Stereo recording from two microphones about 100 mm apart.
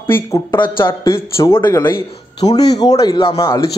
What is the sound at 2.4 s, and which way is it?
Speech, 40° left (ahead or behind).